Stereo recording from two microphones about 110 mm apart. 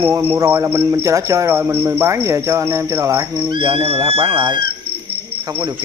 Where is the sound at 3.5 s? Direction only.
50° right (ahead or behind).